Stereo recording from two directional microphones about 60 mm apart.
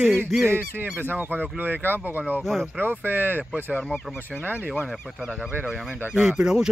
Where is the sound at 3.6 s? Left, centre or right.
Left.